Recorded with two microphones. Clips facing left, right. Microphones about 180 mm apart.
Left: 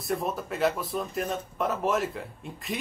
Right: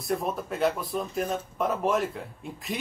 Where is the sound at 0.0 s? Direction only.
Centre (ahead or behind).